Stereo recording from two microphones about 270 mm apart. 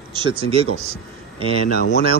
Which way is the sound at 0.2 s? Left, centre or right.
Centre.